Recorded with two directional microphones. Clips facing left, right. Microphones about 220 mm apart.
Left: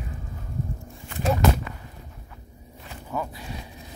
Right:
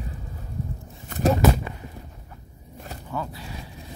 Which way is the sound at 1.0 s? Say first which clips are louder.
Right 5 dB; 40° right (ahead or behind).